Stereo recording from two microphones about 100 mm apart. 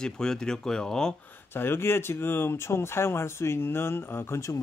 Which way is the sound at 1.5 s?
25° left (ahead or behind).